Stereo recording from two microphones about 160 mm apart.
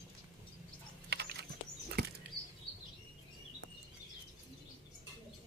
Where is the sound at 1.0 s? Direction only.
90° right.